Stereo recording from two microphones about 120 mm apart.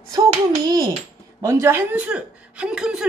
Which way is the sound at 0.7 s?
35° right (ahead or behind).